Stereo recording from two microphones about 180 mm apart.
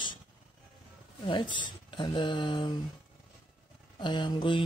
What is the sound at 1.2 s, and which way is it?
Speech, 25° left (ahead or behind).